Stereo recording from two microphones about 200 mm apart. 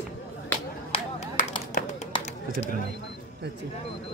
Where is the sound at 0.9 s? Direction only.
30° left (ahead or behind).